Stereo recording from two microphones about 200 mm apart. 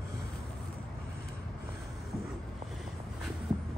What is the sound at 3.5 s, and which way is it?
Shuffle, 25° right (ahead or behind).